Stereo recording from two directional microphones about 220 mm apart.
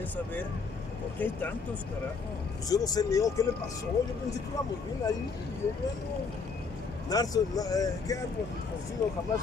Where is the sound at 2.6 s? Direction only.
15° left (ahead or behind).